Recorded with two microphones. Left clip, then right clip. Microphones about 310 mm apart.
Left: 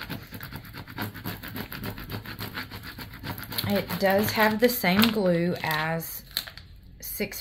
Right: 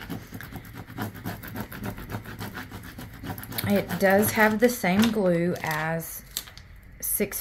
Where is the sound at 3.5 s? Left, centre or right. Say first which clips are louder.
Right 2 dB; centre.